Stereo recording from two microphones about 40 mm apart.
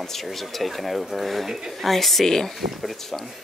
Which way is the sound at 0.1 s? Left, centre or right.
Centre.